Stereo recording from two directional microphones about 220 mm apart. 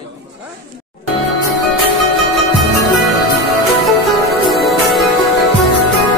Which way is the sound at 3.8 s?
Centre (ahead or behind).